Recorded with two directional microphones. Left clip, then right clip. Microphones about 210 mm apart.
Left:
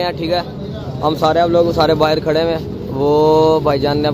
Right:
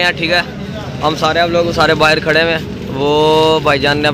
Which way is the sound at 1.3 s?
20° left (ahead or behind).